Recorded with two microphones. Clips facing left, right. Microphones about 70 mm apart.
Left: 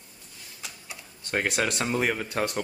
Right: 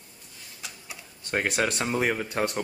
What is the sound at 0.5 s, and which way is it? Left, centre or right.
Typewriter, centre.